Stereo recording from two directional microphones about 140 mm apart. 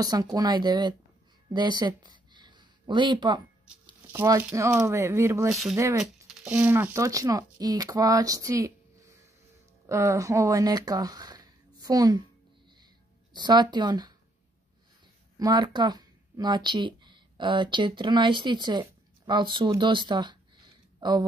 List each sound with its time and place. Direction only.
0.0 s speech: 25° right (ahead or behind)
4.1 s speech: 15° right (ahead or behind)
6.2 s speech: 10° right (ahead or behind); by 12.2 s 25° right (ahead or behind)
13.3 s speech: 30° right (ahead or behind)
15.3 s speech: 30° right (ahead or behind)
19.8 s a sound: 35° right (ahead or behind)